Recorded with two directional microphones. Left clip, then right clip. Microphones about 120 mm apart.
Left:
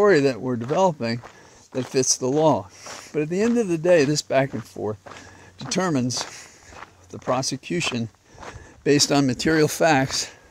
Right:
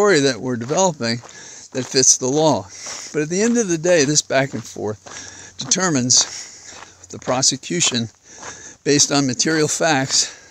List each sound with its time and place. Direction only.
0.0 s speech: 25° right (ahead or behind)
3.8 s speech: 20° right (ahead or behind)
4.6 s speech: 35° right (ahead or behind)
8.8 s speech: 10° right (ahead or behind)
9.2 s speech: centre (ahead or behind)